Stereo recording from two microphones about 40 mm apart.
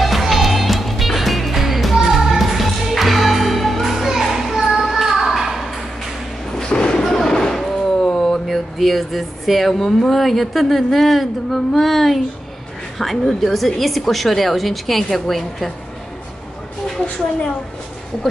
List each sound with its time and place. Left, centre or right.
0.0 s music: centre
6.5 s a sound: left
8.0 s speech: centre
13.3 s a woman's voice: centre